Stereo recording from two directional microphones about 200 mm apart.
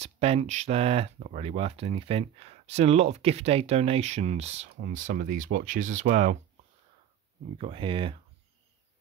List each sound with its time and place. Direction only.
0.0 s speech: 30° right (ahead or behind)
7.5 s speech: 25° right (ahead or behind)